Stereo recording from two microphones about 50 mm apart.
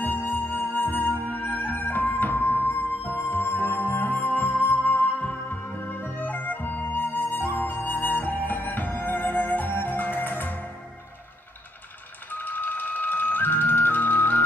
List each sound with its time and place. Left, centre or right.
0.0 s music: left
12.3 s music: left